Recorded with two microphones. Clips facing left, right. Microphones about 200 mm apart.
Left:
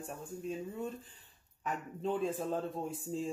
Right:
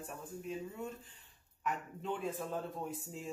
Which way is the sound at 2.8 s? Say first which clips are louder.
Left 6 dB; 30° left (ahead or behind).